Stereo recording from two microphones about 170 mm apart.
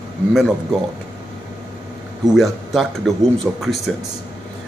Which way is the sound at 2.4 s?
Centre (ahead or behind).